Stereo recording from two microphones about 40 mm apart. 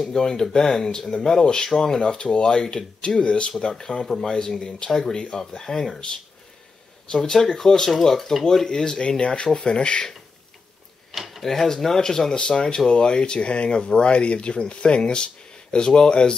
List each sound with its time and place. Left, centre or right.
0.1 s speech: centre
7.1 s speech: centre
11.1 s drawer open or close: centre
11.4 s speech: centre